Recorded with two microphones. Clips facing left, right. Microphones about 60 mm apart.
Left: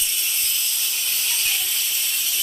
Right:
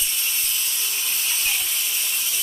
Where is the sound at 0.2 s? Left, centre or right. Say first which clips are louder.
Even; right.